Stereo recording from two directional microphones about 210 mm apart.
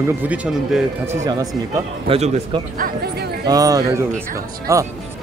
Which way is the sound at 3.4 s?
15° right (ahead or behind).